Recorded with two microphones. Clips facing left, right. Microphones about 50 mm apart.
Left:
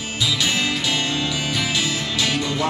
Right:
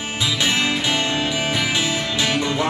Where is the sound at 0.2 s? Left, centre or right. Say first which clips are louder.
Right 1 dB; right.